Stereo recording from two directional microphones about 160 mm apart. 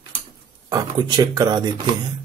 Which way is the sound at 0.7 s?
25° right (ahead or behind).